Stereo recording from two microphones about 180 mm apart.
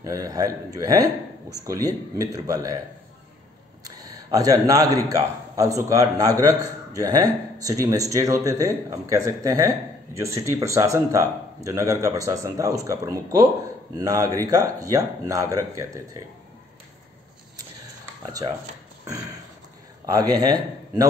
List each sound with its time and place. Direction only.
0.0 s a man's voice: 20° right (ahead or behind)
3.8 s a sound: 20° right (ahead or behind)
5.1 s a man's voice: 20° right (ahead or behind)
20.1 s a man's voice: 20° right (ahead or behind)